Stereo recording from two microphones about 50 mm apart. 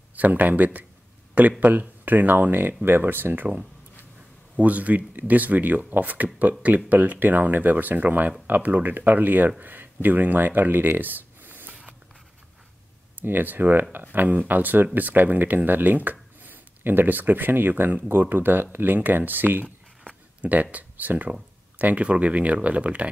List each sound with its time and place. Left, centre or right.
0.1 s speech: right
4.6 s speech: right
13.2 s speech: right
20.7 s speech: right